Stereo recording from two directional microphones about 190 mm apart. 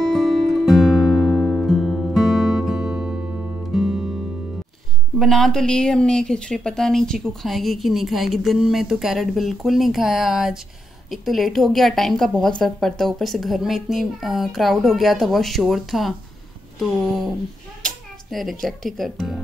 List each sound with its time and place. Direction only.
0.0 s music: centre (ahead or behind)
5.2 s speech: centre (ahead or behind)